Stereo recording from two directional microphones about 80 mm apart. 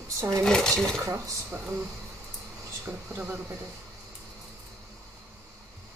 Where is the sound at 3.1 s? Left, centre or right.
Right.